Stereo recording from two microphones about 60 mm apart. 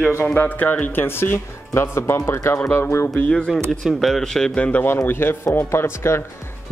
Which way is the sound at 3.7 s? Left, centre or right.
Centre.